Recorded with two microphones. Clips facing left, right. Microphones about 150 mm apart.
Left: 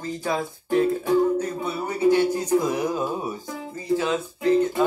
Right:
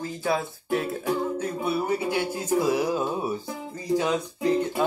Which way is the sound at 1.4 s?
10° right (ahead or behind).